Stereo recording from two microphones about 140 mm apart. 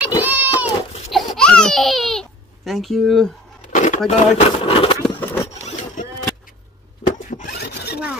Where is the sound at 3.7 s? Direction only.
60° left (ahead or behind).